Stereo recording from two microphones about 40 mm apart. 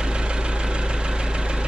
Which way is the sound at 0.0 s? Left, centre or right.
Right.